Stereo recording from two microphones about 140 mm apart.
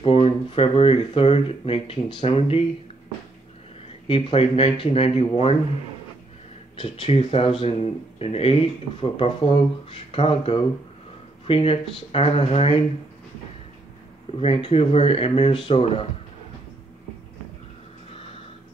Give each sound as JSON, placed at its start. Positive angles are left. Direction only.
{"t": 0.0, "sound": "speech", "side_deg": 40}
{"t": 4.1, "sound": "speech", "side_deg": 45}
{"t": 6.8, "sound": "speech", "side_deg": 40}
{"t": 14.3, "sound": "speech", "side_deg": 40}